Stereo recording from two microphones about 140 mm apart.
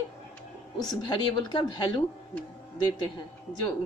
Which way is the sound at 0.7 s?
30° left (ahead or behind).